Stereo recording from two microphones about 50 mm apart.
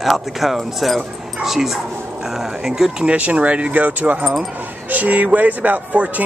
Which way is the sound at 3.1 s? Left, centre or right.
Right.